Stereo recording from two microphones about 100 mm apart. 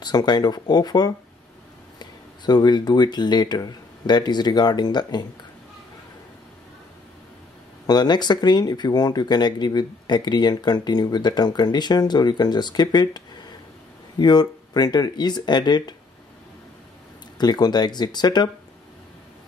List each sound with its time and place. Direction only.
0.0 s speech: 45° left (ahead or behind)
7.8 s speech: 45° left (ahead or behind)
17.4 s speech: 45° left (ahead or behind)